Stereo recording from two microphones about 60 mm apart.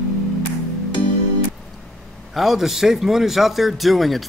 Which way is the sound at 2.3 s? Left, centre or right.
Centre.